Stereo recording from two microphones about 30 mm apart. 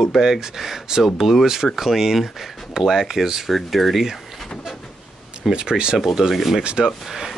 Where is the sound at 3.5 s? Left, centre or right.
Centre.